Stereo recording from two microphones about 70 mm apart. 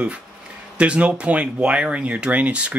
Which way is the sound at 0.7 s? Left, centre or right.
Centre.